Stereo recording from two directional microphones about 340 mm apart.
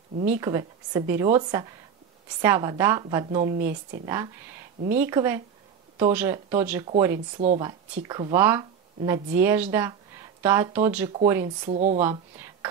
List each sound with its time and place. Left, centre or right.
0.3 s speech: centre
3.5 s speech: right
4.0 s speech: centre
7.3 s speech: centre
11.7 s speech: right
12.0 s speech: centre